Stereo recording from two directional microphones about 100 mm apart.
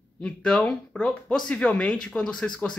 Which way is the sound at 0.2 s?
10° left (ahead or behind).